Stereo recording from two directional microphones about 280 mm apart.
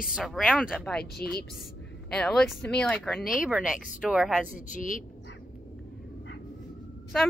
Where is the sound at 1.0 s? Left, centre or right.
Left.